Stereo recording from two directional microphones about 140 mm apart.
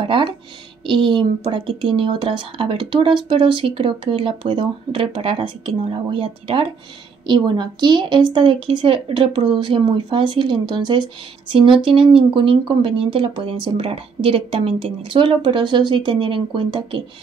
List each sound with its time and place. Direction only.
0.0 s speech: 35° right (ahead or behind)